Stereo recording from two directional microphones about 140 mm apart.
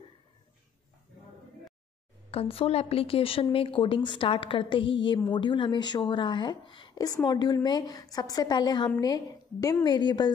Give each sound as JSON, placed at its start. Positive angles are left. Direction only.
{"t": 2.3, "sound": "a woman's voice", "side_deg": 45}